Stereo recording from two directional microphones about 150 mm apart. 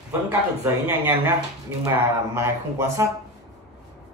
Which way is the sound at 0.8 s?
15° right (ahead or behind).